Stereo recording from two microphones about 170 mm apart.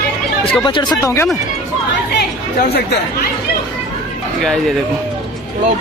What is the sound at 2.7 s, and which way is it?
Speech, 70° left (ahead or behind).